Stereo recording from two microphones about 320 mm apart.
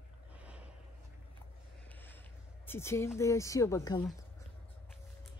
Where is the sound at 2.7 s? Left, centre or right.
Centre.